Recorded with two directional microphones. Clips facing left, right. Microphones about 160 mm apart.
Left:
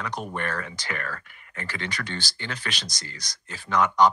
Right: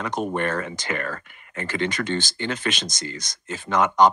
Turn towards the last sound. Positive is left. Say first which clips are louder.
# right 2 dB
turn(degrees=-20)  # may be behind; listen again after turning